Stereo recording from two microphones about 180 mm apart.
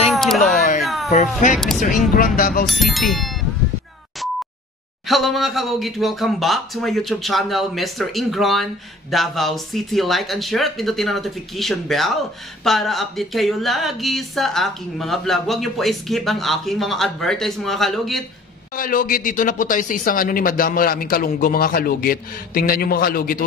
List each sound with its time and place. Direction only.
0.1 s a sound: centre (ahead or behind)
2.1 s speech: 50° left (ahead or behind)
2.6 s speech: centre (ahead or behind)
5.0 s speech: centre (ahead or behind)
18.8 s speech: 50° left (ahead or behind)